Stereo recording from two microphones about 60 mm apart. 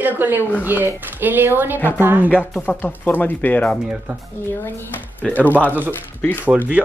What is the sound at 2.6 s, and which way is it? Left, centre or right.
Speech, left.